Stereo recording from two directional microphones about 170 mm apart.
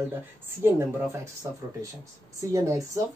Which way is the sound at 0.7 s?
15° right (ahead or behind).